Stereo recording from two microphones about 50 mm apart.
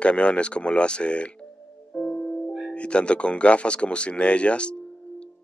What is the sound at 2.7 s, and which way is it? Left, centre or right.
Speech, left.